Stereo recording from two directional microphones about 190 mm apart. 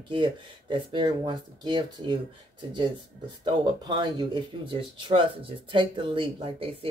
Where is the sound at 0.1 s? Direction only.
25° right (ahead or behind).